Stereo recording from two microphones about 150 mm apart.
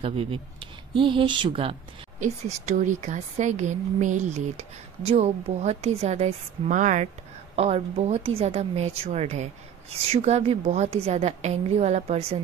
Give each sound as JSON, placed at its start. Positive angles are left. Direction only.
{"t": 0.0, "sound": "speech", "side_deg": -40}
{"t": 2.1, "sound": "a woman's voice", "side_deg": -50}
{"t": 7.5, "sound": "a woman's voice", "side_deg": -45}